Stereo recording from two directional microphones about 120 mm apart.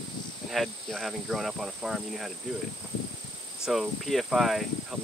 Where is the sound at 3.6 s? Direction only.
Centre (ahead or behind).